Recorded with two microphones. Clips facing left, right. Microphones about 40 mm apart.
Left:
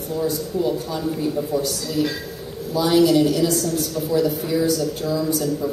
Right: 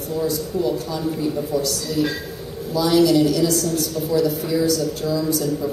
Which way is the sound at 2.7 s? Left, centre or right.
Centre.